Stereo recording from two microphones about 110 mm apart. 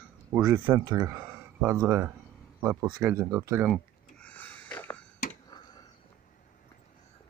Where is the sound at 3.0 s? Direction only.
25° right (ahead or behind).